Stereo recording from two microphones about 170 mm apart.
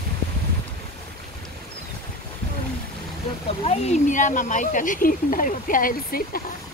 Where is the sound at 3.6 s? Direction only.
45° left (ahead or behind); by 6.4 s 60° left (ahead or behind).